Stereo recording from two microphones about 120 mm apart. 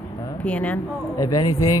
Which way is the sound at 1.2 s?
30° left (ahead or behind).